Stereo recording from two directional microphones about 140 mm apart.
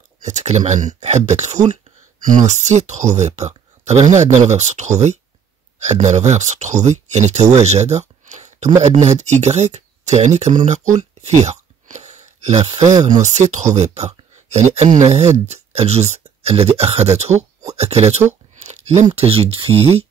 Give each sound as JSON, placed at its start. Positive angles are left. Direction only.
{"t": 0.2, "sound": "speech", "side_deg": -55}
{"t": 11.9, "sound": "a sound", "side_deg": -60}
{"t": 13.0, "sound": "speech", "side_deg": -55}